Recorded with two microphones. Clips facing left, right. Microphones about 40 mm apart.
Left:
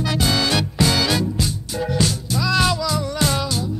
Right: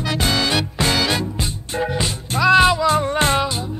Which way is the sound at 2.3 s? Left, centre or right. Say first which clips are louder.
Right 7 dB; right.